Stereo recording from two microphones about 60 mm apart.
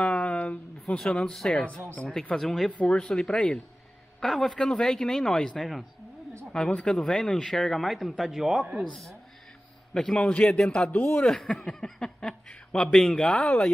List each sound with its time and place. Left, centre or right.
0.0 s a sound: centre
1.1 s speech: centre
2.7 s speech: centre
9.9 s speech: centre
10.8 s speech: left
11.4 s speech: centre